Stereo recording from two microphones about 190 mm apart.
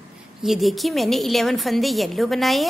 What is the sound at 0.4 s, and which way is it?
A woman's voice, centre (ahead or behind).